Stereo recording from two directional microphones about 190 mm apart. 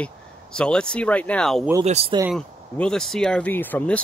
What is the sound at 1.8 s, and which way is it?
Speech, 35° right (ahead or behind).